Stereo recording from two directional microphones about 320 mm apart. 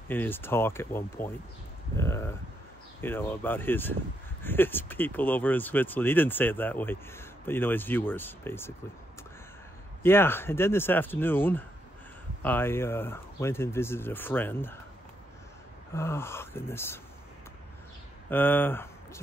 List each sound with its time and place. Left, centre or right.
0.1 s speech: centre
10.0 s speech: centre
15.9 s speech: centre
18.3 s speech: centre